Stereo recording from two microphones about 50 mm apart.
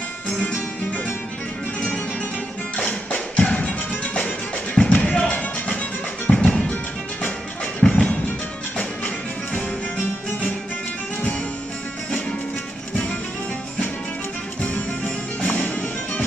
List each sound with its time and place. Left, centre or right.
0.4 s music: left
2.8 s music: left
7.9 s music: left
9.5 s music: left
14.6 s music: left